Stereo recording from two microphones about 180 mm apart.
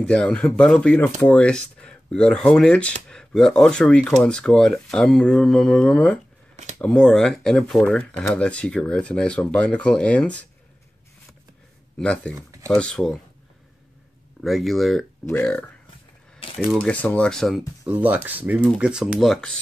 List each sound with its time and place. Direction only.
0.0 s speech: 5° left (ahead or behind)
6.5 s a sound: 40° right (ahead or behind)
6.8 s speech: 5° left (ahead or behind)
12.0 s speech: 5° left (ahead or behind)
14.4 s speech: centre (ahead or behind)
17.8 s speech: 10° right (ahead or behind)